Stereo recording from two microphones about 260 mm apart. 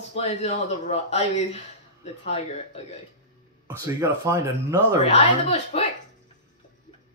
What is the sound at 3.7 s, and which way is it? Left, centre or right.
Speech, centre.